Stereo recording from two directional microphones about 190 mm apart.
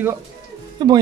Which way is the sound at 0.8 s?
20° right (ahead or behind).